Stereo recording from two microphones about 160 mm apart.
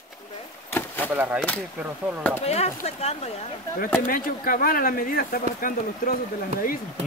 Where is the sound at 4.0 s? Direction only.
60° left (ahead or behind).